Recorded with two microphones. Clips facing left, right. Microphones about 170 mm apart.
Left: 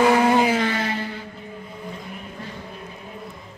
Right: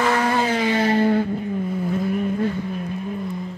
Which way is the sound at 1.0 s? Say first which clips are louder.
Right 13 dB; 55° right (ahead or behind).